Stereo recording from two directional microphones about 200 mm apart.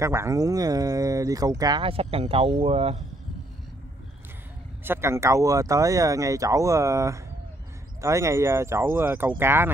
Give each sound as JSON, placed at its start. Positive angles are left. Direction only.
{"t": 0.0, "sound": "speech", "side_deg": -15}
{"t": 4.8, "sound": "speech", "side_deg": -10}